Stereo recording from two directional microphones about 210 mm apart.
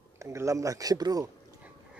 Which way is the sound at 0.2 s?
15° right (ahead or behind).